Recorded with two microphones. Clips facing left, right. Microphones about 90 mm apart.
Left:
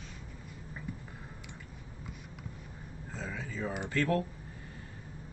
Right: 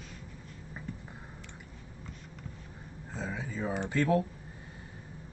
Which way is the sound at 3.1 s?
20° right (ahead or behind).